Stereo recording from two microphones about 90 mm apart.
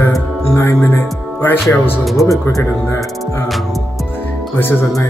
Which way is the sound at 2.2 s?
35° left (ahead or behind).